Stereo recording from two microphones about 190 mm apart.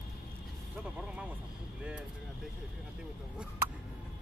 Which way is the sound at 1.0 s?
5° right (ahead or behind).